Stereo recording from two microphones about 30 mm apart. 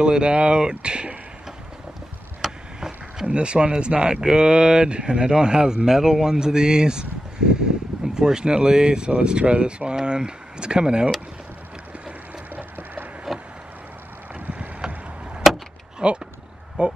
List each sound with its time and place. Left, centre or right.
0.0 s speech: right
2.4 s a sound: centre
3.3 s speech: right
12.5 s a sound: right
13.3 s vehicle: centre
15.4 s vehicle: centre
16.0 s speech: right